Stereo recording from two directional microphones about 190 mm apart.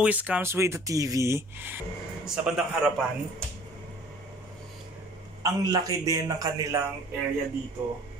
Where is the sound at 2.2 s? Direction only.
Centre (ahead or behind).